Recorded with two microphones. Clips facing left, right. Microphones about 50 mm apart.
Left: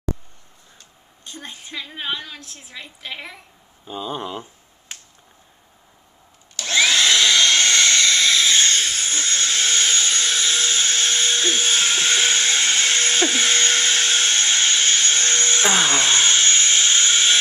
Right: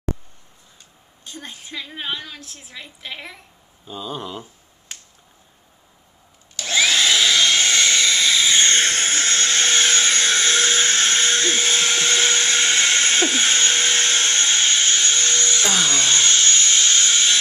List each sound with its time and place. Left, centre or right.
1.2 s a woman's voice: centre
3.8 s speech: centre
6.5 s vacuum cleaner: centre
8.7 s vacuum cleaner: right
12.4 s hair dryer: right
13.7 s a sound: right
15.0 s hair dryer: left